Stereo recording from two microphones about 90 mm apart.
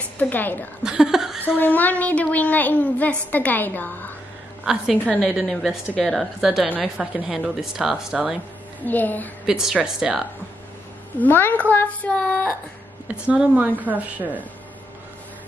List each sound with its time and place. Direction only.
0.2 s a woman's voice: 20° left (ahead or behind)
0.8 s a sound: 5° right (ahead or behind)
1.6 s a woman's voice: 20° left (ahead or behind); by 8.4 s 5° right (ahead or behind)
8.8 s a woman's voice: 20° left (ahead or behind)
9.5 s a woman's voice: 5° right (ahead or behind)
11.1 s a woman's voice: 20° left (ahead or behind)
13.1 s a woman's voice: 15° right (ahead or behind)